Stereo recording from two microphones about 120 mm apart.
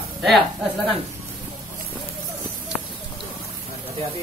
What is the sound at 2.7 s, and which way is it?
Clip-clop, 5° left (ahead or behind).